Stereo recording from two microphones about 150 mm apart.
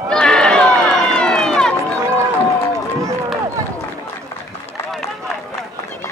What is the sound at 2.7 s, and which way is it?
Run, 20° right (ahead or behind).